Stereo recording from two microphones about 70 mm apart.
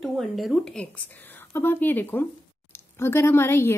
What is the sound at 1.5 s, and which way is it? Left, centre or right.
Speech, left.